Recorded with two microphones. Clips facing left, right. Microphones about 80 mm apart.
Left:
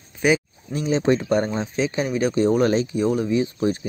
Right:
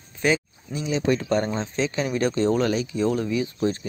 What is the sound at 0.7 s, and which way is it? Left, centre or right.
Speech, left.